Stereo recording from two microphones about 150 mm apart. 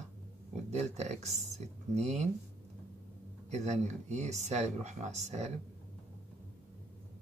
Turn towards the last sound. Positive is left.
turn(degrees=-50)  # may be behind; listen again after turning